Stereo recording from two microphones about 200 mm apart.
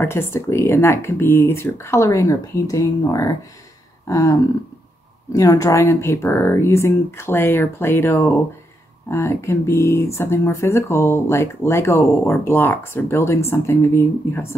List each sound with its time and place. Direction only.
0.0 s speech: 10° left (ahead or behind)